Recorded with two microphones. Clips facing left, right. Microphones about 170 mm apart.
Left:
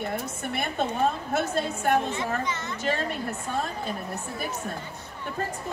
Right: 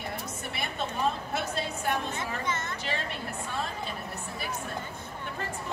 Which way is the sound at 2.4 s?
50° right (ahead or behind).